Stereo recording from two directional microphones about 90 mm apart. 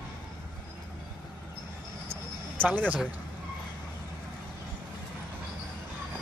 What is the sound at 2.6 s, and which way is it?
Speech, 20° right (ahead or behind).